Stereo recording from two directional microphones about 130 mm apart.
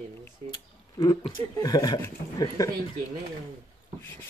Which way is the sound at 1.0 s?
25° left (ahead or behind).